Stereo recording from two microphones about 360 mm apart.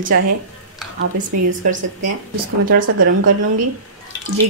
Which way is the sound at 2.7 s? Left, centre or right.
Right.